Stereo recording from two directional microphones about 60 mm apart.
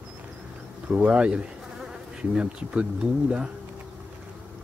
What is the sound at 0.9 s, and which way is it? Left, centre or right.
Speech, centre.